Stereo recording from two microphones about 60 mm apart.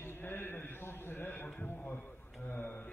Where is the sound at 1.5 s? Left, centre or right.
Left.